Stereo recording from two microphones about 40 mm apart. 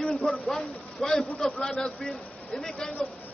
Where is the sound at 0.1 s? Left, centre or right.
Centre.